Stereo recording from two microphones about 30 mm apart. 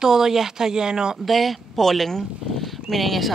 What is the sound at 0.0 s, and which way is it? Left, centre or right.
Speech, centre.